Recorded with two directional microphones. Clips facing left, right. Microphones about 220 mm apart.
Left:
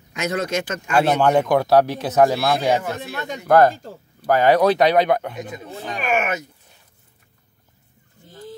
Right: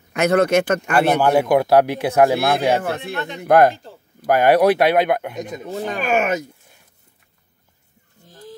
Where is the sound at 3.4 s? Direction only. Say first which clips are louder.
Right 1 dB; 15° right (ahead or behind).